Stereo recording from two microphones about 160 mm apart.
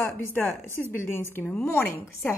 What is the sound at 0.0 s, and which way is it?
A woman's voice, 15° left (ahead or behind).